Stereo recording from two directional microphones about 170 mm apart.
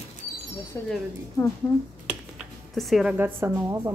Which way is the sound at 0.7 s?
15° left (ahead or behind).